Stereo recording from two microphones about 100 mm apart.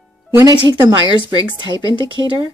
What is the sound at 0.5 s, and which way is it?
Speech, 50° right (ahead or behind).